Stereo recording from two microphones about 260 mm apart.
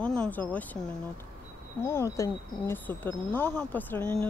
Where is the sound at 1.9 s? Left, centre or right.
Centre.